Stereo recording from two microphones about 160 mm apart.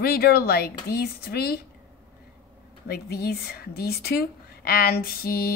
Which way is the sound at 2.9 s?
80° left.